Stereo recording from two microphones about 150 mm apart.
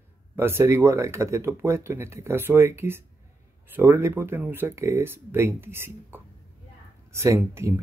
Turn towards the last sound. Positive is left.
turn(degrees=-15)  # may be behind; listen again after turning